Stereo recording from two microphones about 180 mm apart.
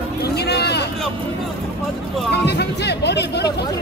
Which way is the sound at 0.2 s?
65° left (ahead or behind).